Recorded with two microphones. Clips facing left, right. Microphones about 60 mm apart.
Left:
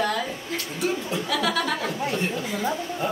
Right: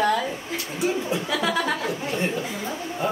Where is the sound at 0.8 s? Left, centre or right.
Centre.